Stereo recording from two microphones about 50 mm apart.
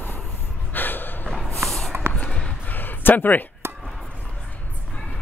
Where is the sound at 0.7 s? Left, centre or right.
Left.